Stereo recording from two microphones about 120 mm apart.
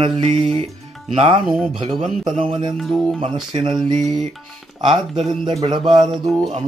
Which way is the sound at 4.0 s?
Centre (ahead or behind).